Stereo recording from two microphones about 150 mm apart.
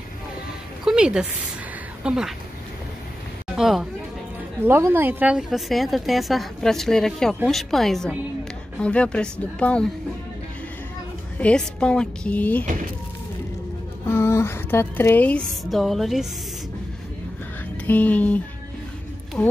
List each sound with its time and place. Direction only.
0.8 s a sound: 5° right (ahead or behind)
2.0 s a woman's voice: 5° right (ahead or behind)
3.5 s a woman's voice: centre (ahead or behind)
4.6 s a woman's voice: 15° right (ahead or behind); by 9.8 s 5° left (ahead or behind)
11.3 s a woman's voice: 5° left (ahead or behind)
14.0 s speech: 15° left (ahead or behind)
15.6 s a woman's voice: centre (ahead or behind)
17.8 s a woman's voice: 10° left (ahead or behind)